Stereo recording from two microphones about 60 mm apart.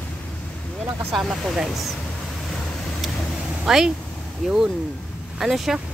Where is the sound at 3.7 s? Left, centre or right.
Centre.